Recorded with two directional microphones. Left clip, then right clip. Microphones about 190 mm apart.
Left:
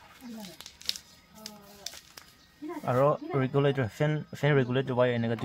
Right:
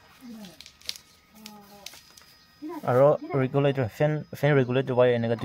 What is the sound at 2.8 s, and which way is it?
Speech, 35° right (ahead or behind).